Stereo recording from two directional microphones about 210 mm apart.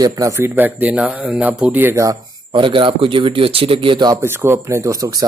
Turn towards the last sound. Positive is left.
turn(degrees=-15)  # may be behind; listen again after turning